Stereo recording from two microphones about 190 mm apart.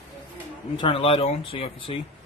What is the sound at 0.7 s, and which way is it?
Speech, 25° left (ahead or behind).